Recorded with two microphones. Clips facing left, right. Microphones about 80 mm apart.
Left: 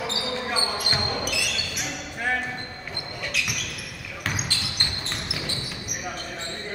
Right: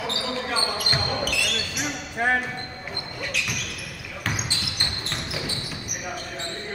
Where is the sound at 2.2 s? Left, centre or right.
Right.